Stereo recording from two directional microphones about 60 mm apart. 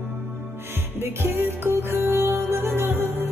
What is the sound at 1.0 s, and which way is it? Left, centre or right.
Music, right.